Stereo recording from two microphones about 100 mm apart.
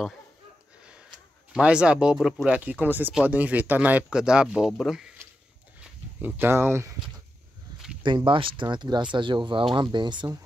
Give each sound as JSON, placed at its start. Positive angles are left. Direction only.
{"t": 1.5, "sound": "speech", "side_deg": -10}
{"t": 2.5, "sound": "speech", "side_deg": -15}
{"t": 6.2, "sound": "speech", "side_deg": -20}
{"t": 8.0, "sound": "speech", "side_deg": -55}